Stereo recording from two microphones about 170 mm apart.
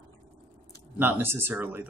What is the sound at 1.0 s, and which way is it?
Speech, 10° right (ahead or behind).